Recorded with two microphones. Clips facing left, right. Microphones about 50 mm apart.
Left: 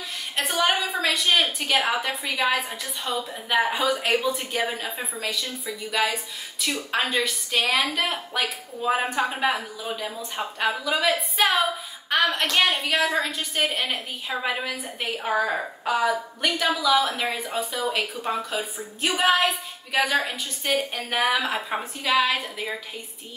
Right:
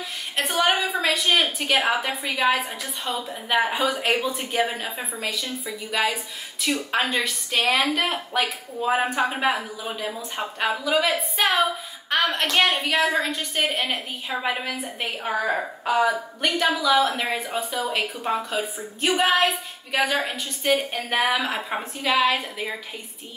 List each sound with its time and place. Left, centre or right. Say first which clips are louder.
0.4 s a woman's voice: right 1 dB; centre
9.1 s a woman's voice: right 2 dB; centre
9.4 s a woman's voice: right 1 dB; centre